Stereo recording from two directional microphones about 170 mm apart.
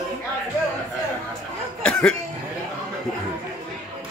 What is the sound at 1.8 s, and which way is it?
Cough, 5° left (ahead or behind).